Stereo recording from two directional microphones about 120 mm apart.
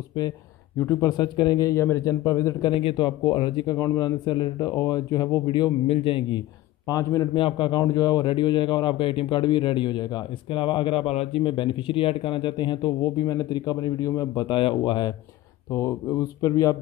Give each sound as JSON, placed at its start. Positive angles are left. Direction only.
{"t": 1.0, "sound": "a man's voice", "side_deg": 35}
{"t": 2.6, "sound": "speech", "side_deg": 45}
{"t": 5.9, "sound": "speech", "side_deg": 55}
{"t": 6.9, "sound": "a man's voice", "side_deg": 30}
{"t": 7.3, "sound": "speech", "side_deg": 45}
{"t": 7.8, "sound": "speech", "side_deg": 30}
{"t": 11.4, "sound": "speech", "side_deg": 45}
{"t": 15.7, "sound": "a man's voice", "side_deg": 25}